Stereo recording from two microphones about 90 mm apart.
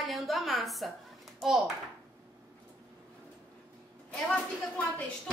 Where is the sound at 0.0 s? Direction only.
Centre (ahead or behind).